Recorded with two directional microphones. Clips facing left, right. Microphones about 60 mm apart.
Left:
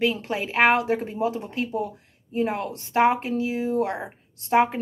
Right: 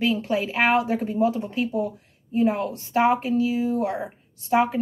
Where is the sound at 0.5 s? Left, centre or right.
Left.